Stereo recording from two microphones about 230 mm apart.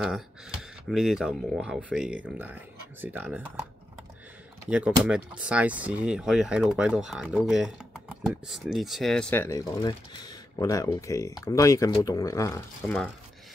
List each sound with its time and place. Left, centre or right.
0.0 s speech: centre
4.6 s speech: centre
12.8 s speech: centre